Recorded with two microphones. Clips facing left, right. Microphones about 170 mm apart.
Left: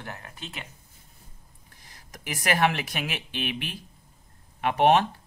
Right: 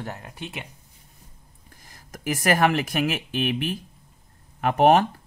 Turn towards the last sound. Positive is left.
turn(degrees=-45)  # may be behind; listen again after turning